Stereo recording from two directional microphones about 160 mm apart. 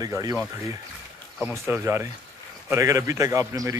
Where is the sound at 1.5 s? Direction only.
15° right (ahead or behind).